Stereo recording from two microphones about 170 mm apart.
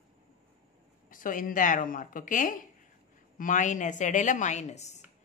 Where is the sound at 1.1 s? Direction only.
50° left (ahead or behind).